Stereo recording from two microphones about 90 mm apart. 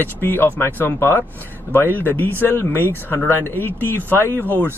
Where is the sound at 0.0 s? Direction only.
25° left (ahead or behind).